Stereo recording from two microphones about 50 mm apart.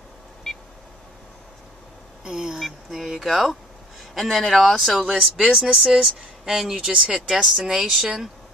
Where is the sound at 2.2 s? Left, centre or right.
Centre.